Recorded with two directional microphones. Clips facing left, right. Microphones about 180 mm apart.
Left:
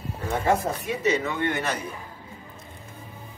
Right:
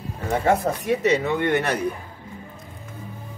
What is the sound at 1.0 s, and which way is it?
Speech, 65° right (ahead or behind).